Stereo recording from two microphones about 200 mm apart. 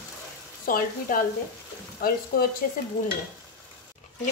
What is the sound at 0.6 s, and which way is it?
A woman's voice, 45° left (ahead or behind).